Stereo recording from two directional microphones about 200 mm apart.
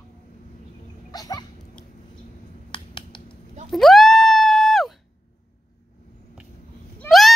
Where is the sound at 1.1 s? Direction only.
20° left (ahead or behind).